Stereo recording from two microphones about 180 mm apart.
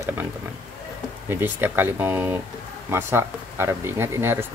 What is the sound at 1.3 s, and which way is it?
Speech, 10° right (ahead or behind).